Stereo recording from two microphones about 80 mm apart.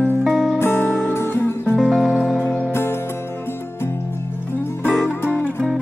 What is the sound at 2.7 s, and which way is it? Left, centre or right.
Music, left.